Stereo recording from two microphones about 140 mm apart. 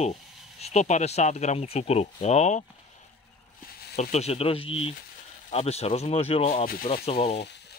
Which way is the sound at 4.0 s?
50° left (ahead or behind).